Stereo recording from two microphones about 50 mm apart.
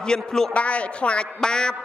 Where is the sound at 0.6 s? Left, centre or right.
Left.